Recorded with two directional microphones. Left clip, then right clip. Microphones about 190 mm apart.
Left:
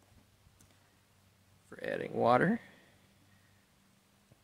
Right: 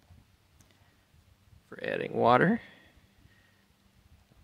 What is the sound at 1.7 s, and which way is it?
Speech, 30° right (ahead or behind).